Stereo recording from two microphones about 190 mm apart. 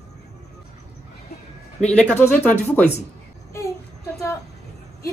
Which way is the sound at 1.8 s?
5° left (ahead or behind).